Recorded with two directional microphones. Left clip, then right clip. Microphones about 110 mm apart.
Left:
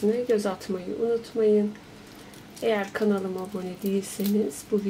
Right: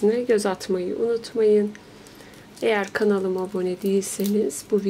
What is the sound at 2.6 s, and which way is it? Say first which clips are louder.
Speech: right 4 dB; 45° right (ahead or behind).